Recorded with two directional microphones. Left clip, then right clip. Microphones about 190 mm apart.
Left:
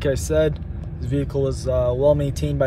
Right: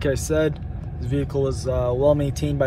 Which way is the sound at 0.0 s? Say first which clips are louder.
Left 2 dB; 10° left (ahead or behind).